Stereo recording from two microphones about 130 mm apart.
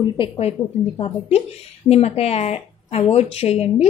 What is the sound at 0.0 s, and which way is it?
A woman's voice, 45° left (ahead or behind).